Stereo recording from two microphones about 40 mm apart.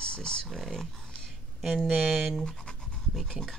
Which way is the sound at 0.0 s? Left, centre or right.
Left.